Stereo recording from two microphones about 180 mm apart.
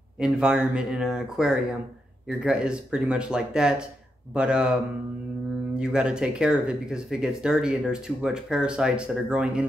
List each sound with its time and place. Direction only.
0.2 s speech: 5° right (ahead or behind)
5.8 s speech: 5° right (ahead or behind)